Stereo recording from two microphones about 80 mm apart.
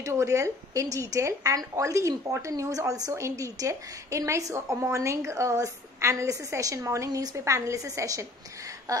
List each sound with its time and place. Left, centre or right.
0.0 s speech: right